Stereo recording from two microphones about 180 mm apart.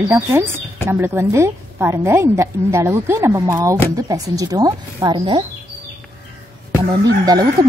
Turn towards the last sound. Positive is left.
turn(degrees=-20)  # may be behind; listen again after turning